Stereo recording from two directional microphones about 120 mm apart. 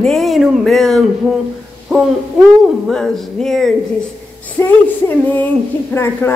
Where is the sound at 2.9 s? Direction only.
5° left (ahead or behind).